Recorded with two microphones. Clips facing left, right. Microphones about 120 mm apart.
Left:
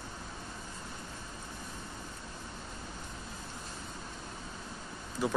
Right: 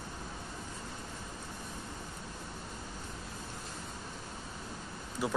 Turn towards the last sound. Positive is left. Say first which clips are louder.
# left 2 dB
turn(degrees=-5)  # may be behind; listen again after turning